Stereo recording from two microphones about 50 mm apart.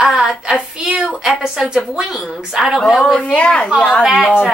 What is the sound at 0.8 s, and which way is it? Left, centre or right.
A woman's voice, centre.